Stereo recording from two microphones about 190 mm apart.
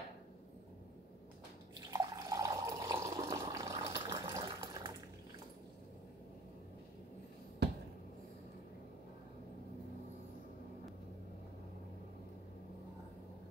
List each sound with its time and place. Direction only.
1.9 s water: 20° right (ahead or behind)